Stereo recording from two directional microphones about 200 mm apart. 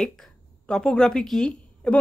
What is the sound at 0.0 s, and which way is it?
A woman's voice, centre (ahead or behind).